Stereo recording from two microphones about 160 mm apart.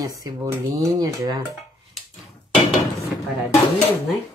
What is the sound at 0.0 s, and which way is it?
Speech, 20° right (ahead or behind).